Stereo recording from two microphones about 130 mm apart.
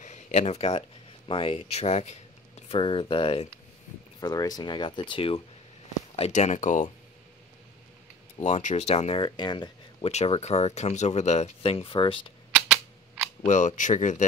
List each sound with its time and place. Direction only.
0.0 s a sound: 65° left (ahead or behind)
0.7 s speech: 40° left (ahead or behind)
1.8 s a sound: 55° left (ahead or behind)
2.8 s speech: 40° left (ahead or behind)
4.2 s speech: 30° left (ahead or behind)
6.1 s speech: 55° left (ahead or behind); by 6.9 s 75° left (ahead or behind)
8.4 s speech: 65° left (ahead or behind)
9.2 s speech: 35° left (ahead or behind)
10.0 s speech: 50° left (ahead or behind)
13.5 s speech: 70° left (ahead or behind)